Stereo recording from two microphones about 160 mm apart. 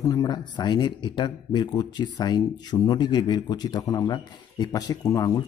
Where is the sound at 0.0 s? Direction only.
20° left (ahead or behind).